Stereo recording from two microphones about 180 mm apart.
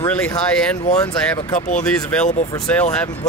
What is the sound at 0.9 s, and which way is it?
Speech, 5° left (ahead or behind).